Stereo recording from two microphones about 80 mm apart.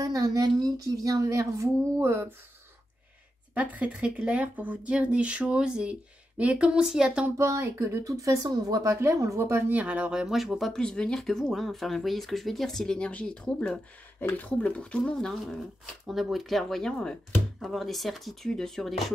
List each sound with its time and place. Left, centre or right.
0.0 s a woman's voice: right
2.0 s speech: right
3.5 s speech: centre
7.3 s speech: right
9.7 s speech: centre
10.2 s speech: centre